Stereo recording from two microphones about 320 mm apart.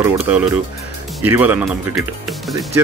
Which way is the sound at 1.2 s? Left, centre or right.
Centre.